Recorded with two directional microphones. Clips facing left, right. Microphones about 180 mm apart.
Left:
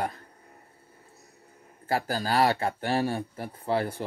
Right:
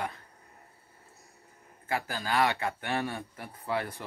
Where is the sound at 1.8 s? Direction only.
35° left (ahead or behind).